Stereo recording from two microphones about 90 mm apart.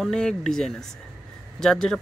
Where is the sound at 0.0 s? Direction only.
5° left (ahead or behind).